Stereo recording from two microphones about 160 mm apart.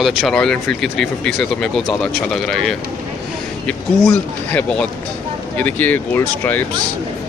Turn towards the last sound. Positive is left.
turn(degrees=10)  # may be behind; listen again after turning